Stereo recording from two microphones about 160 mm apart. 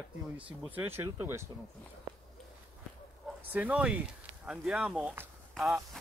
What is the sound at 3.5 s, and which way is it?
Speech, 10° right (ahead or behind).